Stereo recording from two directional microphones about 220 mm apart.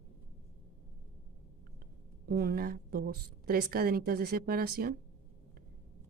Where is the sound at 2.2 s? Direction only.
45° right (ahead or behind).